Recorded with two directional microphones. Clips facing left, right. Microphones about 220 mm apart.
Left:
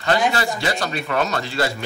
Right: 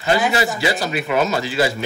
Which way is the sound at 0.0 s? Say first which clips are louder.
Right 2 dB; 5° right (ahead or behind).